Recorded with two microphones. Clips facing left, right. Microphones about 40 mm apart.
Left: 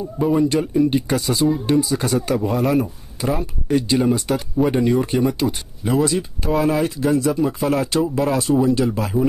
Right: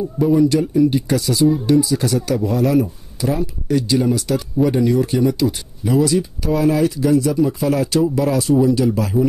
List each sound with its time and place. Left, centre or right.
0.5 s speech: left